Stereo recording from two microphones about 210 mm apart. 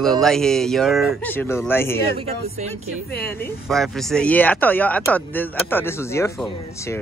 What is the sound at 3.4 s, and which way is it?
Speech, centre (ahead or behind).